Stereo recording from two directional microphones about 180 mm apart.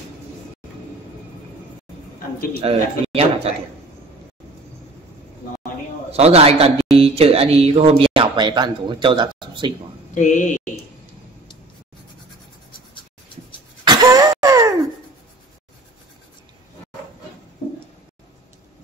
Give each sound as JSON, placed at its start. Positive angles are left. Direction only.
{"t": 2.5, "sound": "speech", "side_deg": -35}
{"t": 6.1, "sound": "speech", "side_deg": -35}
{"t": 10.1, "sound": "speech", "side_deg": 45}
{"t": 13.8, "sound": "throat clearing", "side_deg": -20}